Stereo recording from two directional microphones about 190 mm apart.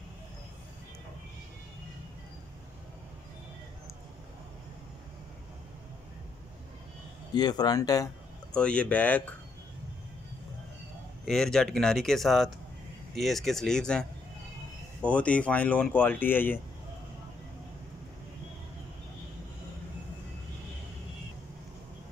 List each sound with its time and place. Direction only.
7.3 s speech: 20° left (ahead or behind)
8.5 s speech: 5° left (ahead or behind)
11.2 s speech: 5° left (ahead or behind)